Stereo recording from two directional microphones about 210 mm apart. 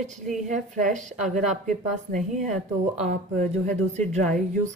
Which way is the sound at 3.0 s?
35° right (ahead or behind).